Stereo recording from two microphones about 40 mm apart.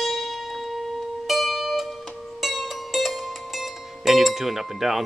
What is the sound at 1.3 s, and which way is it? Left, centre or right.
Music, centre.